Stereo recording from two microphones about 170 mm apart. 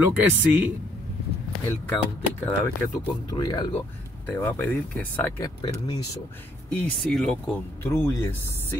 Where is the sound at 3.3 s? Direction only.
25° left (ahead or behind).